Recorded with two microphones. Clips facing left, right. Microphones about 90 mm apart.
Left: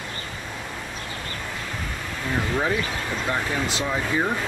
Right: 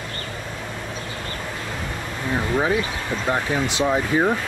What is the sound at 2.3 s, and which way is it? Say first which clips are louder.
Speech: right 3 dB; 15° right (ahead or behind).